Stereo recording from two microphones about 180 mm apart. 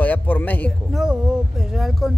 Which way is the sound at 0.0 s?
10° left (ahead or behind).